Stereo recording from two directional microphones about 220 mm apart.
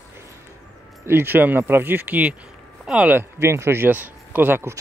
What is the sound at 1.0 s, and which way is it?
Speech, 10° right (ahead or behind).